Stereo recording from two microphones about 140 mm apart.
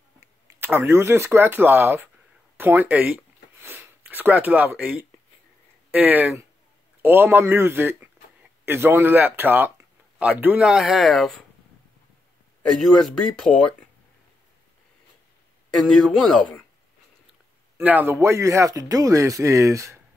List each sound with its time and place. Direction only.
0.5 s speech: 15° right (ahead or behind); by 11.4 s centre (ahead or behind)
12.8 s speech: 5° left (ahead or behind)
15.7 s speech: centre (ahead or behind)
17.7 s speech: 10° right (ahead or behind)